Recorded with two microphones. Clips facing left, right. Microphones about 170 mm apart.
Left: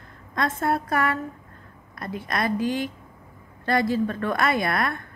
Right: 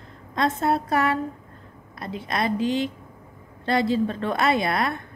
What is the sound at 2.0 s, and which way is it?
Speech, 50° left (ahead or behind).